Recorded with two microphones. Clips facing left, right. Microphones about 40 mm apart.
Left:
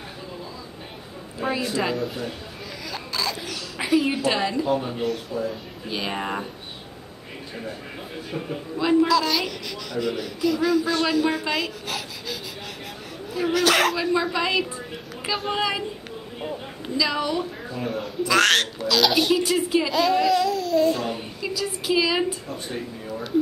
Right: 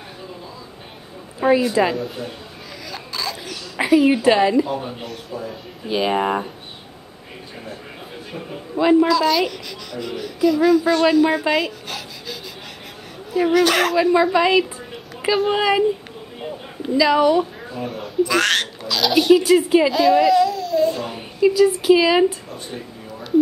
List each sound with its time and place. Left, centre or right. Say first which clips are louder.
1.4 s a woman's voice: right 9 dB; centre
2.9 s a sound: even; centre
4.6 s speech: left 3 dB; centre
8.3 s a man's voice: left 2 dB; centre
16.9 s speech: right 9 dB; centre
17.7 s a woman's voice: right 6 dB; centre